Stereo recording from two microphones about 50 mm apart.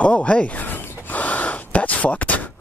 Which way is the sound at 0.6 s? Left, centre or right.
Left.